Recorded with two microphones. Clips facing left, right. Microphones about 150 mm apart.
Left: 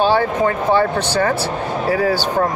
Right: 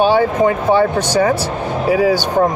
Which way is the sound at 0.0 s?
15° right (ahead or behind).